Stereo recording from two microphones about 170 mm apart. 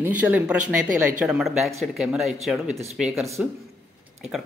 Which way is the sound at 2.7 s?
40° right (ahead or behind).